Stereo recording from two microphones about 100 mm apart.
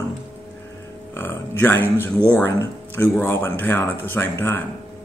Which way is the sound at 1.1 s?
20° left (ahead or behind).